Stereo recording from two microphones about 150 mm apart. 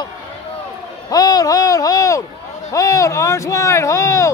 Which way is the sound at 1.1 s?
25° left (ahead or behind).